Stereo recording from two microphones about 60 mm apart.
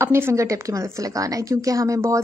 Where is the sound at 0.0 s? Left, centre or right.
Right.